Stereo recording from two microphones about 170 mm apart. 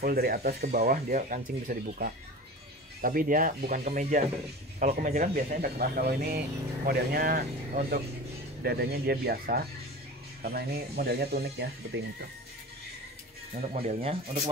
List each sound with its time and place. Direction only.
0.0 s speech: 65° right (ahead or behind)
1.1 s speech: 50° right (ahead or behind); by 12.0 s 80° right
13.6 s speech: 35° right (ahead or behind)